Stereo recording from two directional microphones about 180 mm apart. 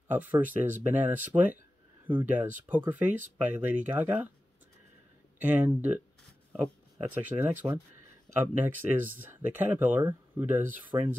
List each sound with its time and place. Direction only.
0.1 s speech: 10° right (ahead or behind)
5.5 s speech: 10° right (ahead or behind)